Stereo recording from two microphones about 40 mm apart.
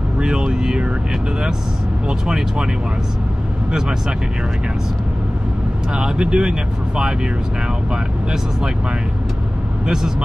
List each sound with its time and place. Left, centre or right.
0.2 s vehicle: centre
2.0 s speech: right
5.9 s speech: right